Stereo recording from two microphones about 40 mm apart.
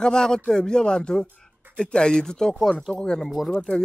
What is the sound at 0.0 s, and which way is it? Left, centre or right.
A man's voice, centre.